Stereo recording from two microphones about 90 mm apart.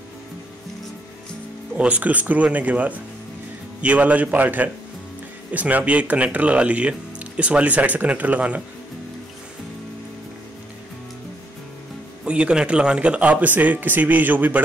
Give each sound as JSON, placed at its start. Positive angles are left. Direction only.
{"t": 1.8, "sound": "speech", "side_deg": -15}
{"t": 12.3, "sound": "speech", "side_deg": -10}